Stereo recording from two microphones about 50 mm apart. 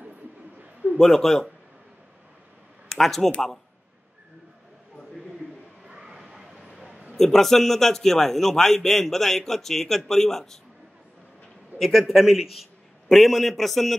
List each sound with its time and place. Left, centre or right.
0.9 s a man's voice: centre
2.9 s speech: centre
5.9 s a sound: centre
7.2 s a man's voice: centre
11.8 s a man's voice: centre